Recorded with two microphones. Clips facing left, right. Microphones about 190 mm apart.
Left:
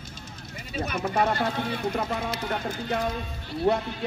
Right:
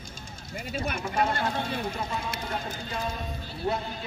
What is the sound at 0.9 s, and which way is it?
A man's voice, 60° left (ahead or behind).